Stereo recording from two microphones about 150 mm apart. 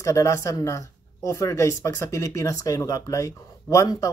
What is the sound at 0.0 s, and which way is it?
A woman's voice, 20° left (ahead or behind).